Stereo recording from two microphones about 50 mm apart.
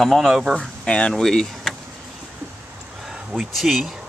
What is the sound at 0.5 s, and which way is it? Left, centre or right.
Speech, centre.